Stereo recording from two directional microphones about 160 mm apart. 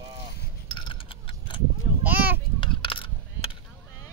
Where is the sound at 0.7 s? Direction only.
30° left (ahead or behind).